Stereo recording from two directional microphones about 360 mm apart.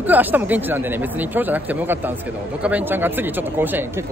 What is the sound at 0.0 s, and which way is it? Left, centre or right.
Speech, centre.